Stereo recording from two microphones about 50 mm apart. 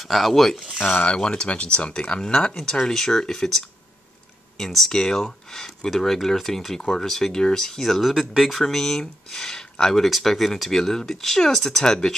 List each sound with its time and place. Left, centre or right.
0.0 s speech: centre
1.0 s speech: centre